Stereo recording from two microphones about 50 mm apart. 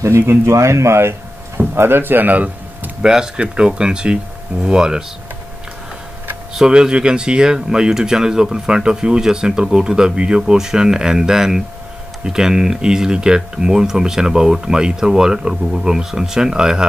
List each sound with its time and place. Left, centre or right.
0.3 s speech: right
1.8 s speech: right
3.0 s speech: centre
6.5 s speech: centre